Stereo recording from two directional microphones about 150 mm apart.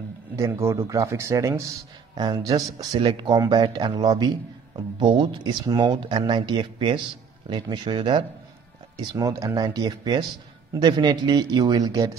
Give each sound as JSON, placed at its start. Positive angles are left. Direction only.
{"t": 0.4, "sound": "speech", "side_deg": -20}